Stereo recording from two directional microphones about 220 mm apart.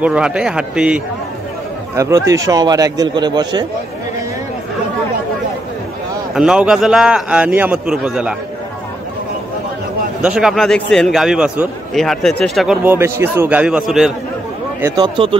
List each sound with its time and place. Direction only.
0.0 s a man's voice: 5° right (ahead or behind); by 3.6 s 20° right (ahead or behind)
6.3 s a man's voice: 5° right (ahead or behind)
10.2 s a man's voice: 5° right (ahead or behind)
14.8 s speech: 15° right (ahead or behind)